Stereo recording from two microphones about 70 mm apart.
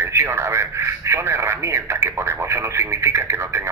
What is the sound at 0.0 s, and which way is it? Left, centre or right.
Speech, right.